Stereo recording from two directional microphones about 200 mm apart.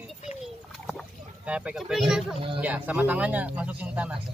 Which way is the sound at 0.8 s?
5° right (ahead or behind).